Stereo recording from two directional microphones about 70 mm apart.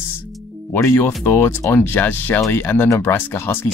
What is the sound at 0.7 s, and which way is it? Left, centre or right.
Speech, left.